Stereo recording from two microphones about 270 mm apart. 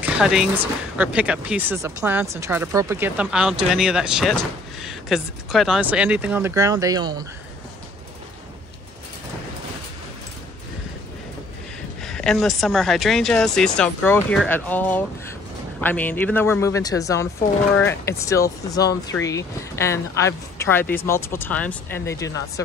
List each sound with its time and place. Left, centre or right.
0.0 s a sound: centre
0.9 s speech: centre
12.0 s speech: centre